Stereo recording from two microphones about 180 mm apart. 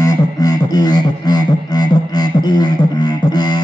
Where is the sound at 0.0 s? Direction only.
20° left (ahead or behind).